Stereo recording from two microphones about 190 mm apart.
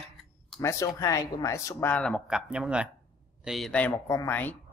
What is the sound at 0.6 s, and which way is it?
Speech, 15° left (ahead or behind).